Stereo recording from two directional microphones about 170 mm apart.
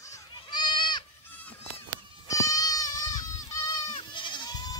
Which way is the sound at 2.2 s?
20° left (ahead or behind).